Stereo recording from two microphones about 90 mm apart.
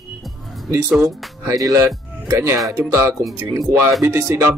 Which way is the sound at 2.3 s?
25° right (ahead or behind).